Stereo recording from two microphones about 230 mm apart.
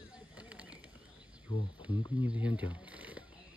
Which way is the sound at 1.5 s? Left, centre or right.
Left.